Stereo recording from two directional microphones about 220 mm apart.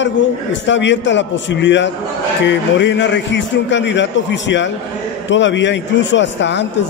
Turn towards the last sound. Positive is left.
turn(degrees=55)  # may be behind; listen again after turning